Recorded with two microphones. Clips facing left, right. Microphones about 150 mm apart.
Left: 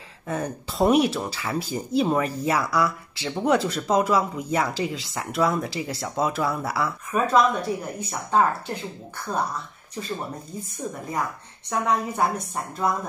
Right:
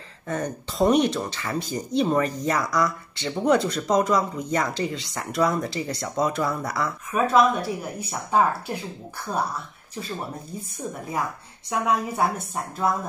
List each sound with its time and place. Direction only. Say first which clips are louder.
0.3 s speech: even; 5° left (ahead or behind); by 9.4 s 10° right (ahead or behind)
10.8 s speech: even; centre (ahead or behind)